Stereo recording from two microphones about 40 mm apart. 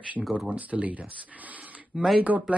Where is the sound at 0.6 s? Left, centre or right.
Right.